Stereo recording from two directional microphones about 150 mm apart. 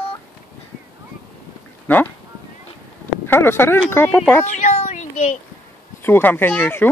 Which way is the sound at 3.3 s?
15° left (ahead or behind).